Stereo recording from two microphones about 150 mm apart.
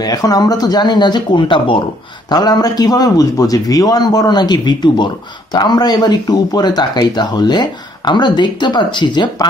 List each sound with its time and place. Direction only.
0.0 s a man's voice: 25° left (ahead or behind)